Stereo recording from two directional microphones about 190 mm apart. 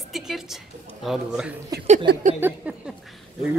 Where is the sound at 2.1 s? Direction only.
60° right (ahead or behind).